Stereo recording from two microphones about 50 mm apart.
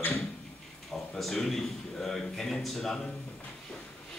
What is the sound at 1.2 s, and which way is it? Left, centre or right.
Speech, centre.